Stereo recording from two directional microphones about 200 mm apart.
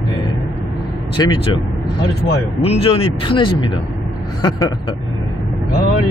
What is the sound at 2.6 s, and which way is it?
Speech, 30° left (ahead or behind).